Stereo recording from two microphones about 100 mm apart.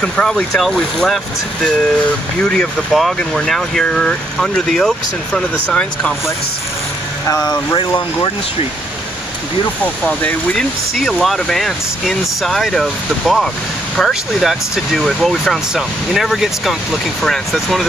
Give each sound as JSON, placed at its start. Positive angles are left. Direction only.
{"t": 0.0, "sound": "speech", "side_deg": 10}
{"t": 7.2, "sound": "speech", "side_deg": 35}
{"t": 10.0, "sound": "speech", "side_deg": 10}